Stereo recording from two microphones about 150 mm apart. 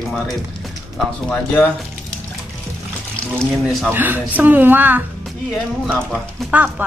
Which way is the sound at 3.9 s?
10° right (ahead or behind).